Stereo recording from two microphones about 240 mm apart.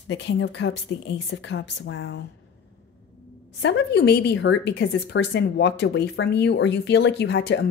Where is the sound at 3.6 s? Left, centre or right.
Left.